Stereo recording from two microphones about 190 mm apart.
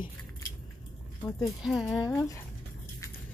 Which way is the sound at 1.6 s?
Centre (ahead or behind).